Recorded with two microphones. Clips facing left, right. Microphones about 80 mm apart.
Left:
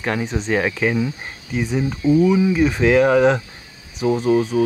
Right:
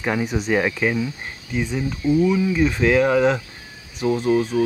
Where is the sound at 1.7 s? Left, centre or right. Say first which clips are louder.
Left 4 dB; left; by 4.6 s centre.